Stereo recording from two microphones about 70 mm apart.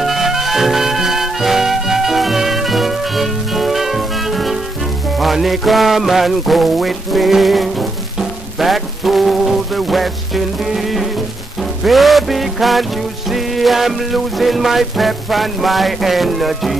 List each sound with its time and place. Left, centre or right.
0.0 s music: centre